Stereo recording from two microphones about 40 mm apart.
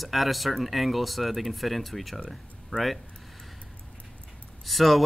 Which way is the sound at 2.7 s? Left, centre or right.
Left.